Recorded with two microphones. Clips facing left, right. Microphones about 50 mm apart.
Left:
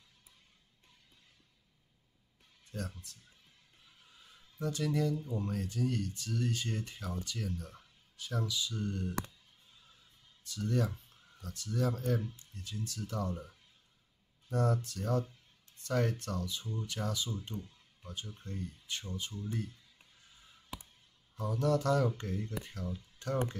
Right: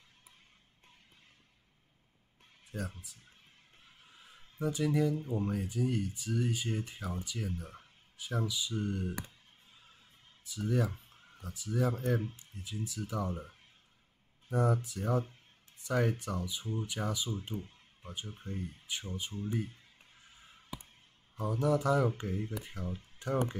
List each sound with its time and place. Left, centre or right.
2.7 s speech: centre
3.8 s a sound: right
4.6 s speech: centre
5.1 s speech: right
5.5 s speech: centre
10.4 s speech: centre
10.9 s a sound: right
11.4 s speech: centre
14.5 s speech: centre
17.6 s music: right
18.2 s speech: right
20.2 s a sound: right
21.4 s speech: centre